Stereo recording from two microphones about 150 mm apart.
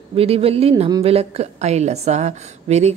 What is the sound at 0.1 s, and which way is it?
A woman's voice, 40° right (ahead or behind).